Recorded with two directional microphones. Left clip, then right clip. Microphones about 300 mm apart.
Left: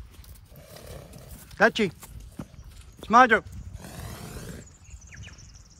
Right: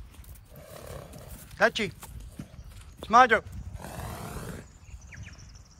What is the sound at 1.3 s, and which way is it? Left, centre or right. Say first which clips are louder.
Clip-clop: left 3 dB; centre.